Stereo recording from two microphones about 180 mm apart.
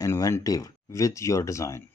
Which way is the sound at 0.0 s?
15° left (ahead or behind).